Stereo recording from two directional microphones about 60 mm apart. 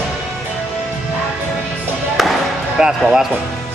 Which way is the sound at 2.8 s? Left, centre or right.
Centre.